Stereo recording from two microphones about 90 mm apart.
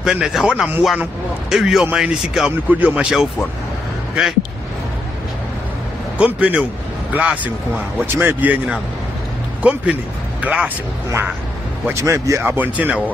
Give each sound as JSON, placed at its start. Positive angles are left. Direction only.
{"t": 0.0, "sound": "a man's voice", "side_deg": -5}
{"t": 6.1, "sound": "a man's voice", "side_deg": -15}
{"t": 11.8, "sound": "speech", "side_deg": -30}
{"t": 12.5, "sound": "speech", "side_deg": -20}